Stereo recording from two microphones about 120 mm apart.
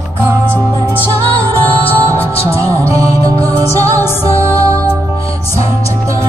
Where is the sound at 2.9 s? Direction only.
25° right (ahead or behind).